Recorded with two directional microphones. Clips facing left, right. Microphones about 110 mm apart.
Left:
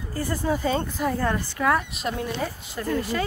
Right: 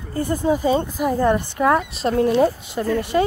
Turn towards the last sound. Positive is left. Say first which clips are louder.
# right 6 dB
turn(degrees=-20)  # may be behind; listen again after turning